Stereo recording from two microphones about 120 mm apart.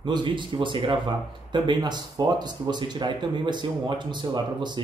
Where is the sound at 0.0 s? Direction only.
40° right (ahead or behind).